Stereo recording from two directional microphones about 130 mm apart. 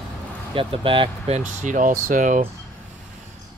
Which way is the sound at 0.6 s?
45° right (ahead or behind).